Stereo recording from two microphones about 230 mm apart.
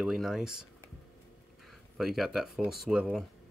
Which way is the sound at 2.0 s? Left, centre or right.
Centre.